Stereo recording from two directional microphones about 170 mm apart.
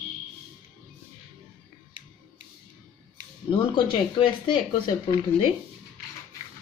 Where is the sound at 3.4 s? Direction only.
30° left (ahead or behind).